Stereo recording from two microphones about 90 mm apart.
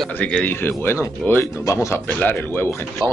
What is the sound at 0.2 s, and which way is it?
Speech, 15° left (ahead or behind).